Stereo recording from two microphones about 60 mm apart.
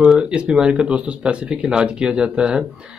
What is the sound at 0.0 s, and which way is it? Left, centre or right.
Speech, centre.